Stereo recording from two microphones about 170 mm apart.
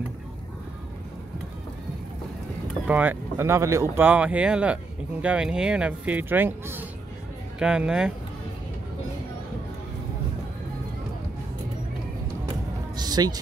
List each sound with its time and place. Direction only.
2.9 s speech: 10° right (ahead or behind)
12.9 s music: 25° right (ahead or behind)